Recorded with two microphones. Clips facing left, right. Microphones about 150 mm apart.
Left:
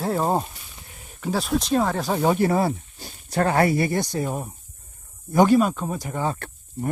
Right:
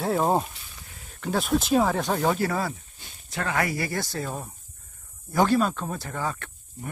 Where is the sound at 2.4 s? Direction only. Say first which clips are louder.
Left 6 dB; 25° left (ahead or behind).